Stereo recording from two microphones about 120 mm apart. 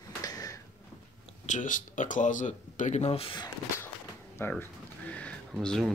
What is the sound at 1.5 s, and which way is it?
Speech, 90° left.